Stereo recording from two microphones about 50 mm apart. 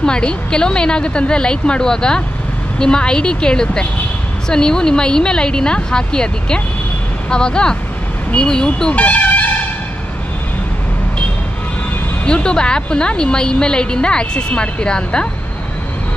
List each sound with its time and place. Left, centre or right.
0.0 s a woman's voice: centre
8.9 s music: left
12.3 s a woman's voice: centre